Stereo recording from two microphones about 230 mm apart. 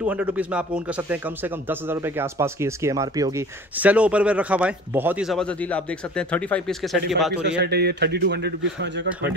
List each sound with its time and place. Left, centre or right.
0.0 s speech: centre
7.4 s a man's voice: right